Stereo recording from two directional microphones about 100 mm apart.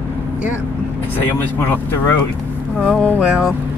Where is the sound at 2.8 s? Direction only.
10° left (ahead or behind).